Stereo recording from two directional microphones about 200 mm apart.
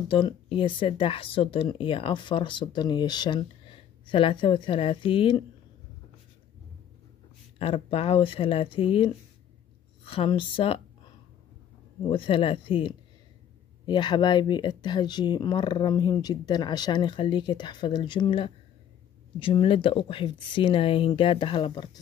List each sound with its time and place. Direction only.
0.1 s speech: 25° left (ahead or behind)
7.5 s speech: 30° left (ahead or behind)
12.0 s speech: 25° left (ahead or behind)